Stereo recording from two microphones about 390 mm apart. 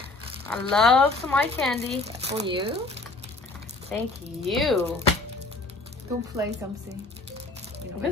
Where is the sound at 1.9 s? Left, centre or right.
Centre.